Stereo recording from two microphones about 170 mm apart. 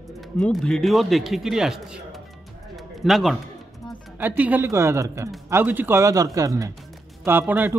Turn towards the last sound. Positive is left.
turn(degrees=-10)  # may be behind; listen again after turning